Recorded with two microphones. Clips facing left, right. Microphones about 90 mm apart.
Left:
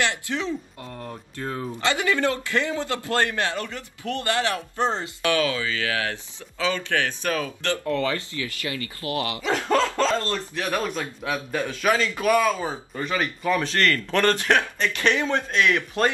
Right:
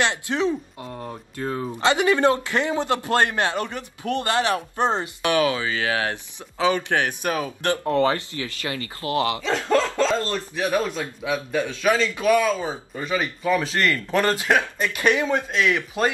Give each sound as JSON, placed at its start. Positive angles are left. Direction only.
{"t": 0.0, "sound": "speech", "side_deg": -20}
{"t": 9.4, "sound": "speech", "side_deg": 10}
{"t": 10.1, "sound": "a man's voice", "side_deg": -15}
{"t": 11.2, "sound": "a man's voice", "side_deg": 0}